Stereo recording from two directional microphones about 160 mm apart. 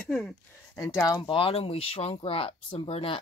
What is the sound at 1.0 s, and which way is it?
Speech, 25° left (ahead or behind).